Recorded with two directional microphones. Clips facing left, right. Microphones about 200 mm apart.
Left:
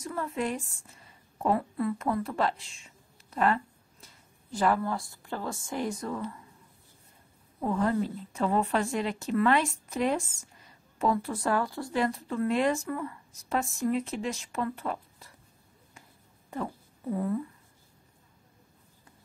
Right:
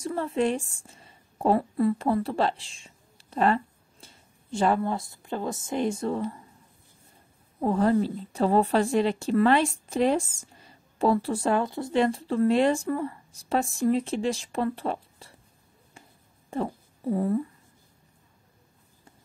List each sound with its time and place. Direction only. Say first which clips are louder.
0.0 s a woman's voice: right 6 dB; 30° right (ahead or behind)
7.6 s speech: right 5 dB; 35° right (ahead or behind)
16.4 s a sound: right 5 dB; 30° right (ahead or behind)